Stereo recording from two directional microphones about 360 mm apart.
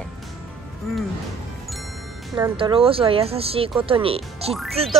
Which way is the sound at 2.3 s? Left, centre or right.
Centre.